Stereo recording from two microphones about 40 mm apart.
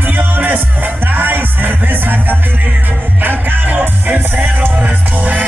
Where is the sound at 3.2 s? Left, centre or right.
Right.